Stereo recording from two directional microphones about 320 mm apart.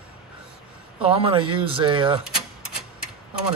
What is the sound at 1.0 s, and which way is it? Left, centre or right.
Speech, centre.